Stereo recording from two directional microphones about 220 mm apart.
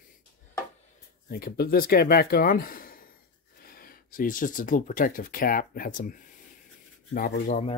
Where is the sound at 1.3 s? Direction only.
45° left (ahead or behind).